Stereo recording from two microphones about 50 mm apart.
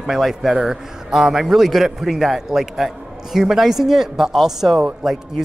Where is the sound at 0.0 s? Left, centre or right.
Centre.